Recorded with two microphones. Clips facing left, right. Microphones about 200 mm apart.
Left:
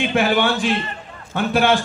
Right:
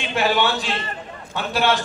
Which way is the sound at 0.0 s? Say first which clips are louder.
Left 3 dB; 50° left (ahead or behind).